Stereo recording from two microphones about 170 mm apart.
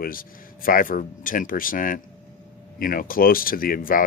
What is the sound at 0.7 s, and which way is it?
Speech, 55° left (ahead or behind).